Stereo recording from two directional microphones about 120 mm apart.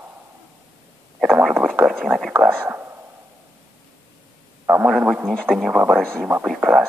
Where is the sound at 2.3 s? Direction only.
15° right (ahead or behind).